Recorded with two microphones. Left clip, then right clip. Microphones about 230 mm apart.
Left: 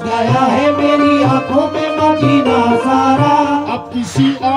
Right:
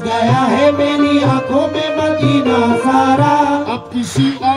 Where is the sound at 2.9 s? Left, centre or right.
Right.